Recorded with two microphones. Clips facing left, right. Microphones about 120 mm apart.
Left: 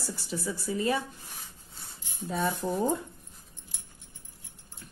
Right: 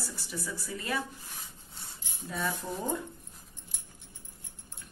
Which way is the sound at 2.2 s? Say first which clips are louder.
Left 5 dB; 30° left (ahead or behind).